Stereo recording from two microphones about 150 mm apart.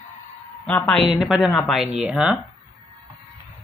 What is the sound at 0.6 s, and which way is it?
Speech, 5° left (ahead or behind).